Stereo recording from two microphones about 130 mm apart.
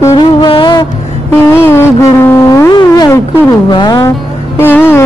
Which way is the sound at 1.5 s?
20° left (ahead or behind).